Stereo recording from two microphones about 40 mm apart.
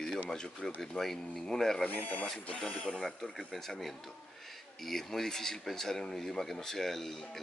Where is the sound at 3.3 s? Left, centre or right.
Centre.